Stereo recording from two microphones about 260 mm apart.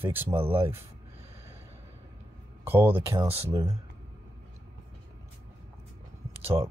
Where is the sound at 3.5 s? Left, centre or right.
Centre.